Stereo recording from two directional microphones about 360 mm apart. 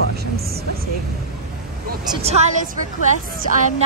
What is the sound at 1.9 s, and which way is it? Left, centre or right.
Speech, centre.